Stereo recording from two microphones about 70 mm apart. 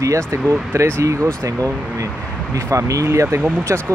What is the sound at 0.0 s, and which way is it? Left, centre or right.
Speech, right.